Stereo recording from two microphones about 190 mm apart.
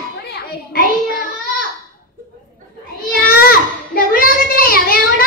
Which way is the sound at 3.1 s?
55° left (ahead or behind).